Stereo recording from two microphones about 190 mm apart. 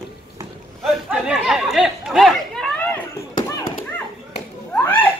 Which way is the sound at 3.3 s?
45° left (ahead or behind).